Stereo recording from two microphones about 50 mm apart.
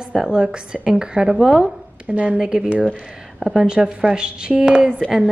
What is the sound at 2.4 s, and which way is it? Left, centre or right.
A woman's voice, centre.